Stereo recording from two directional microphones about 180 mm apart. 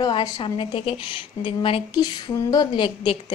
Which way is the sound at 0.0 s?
25° left (ahead or behind).